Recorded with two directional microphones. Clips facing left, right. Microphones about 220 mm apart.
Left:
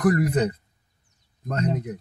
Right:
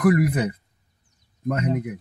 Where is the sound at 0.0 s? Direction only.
10° right (ahead or behind).